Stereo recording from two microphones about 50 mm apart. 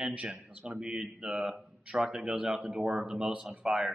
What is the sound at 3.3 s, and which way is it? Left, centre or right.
Speech, right.